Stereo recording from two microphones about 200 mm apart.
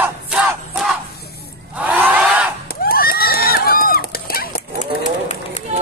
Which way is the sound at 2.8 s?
50° left (ahead or behind).